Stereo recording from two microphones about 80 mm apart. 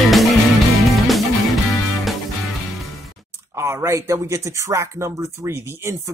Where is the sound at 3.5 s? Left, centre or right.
Right.